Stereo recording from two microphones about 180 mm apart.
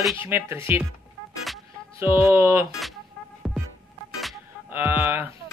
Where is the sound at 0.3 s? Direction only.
15° right (ahead or behind).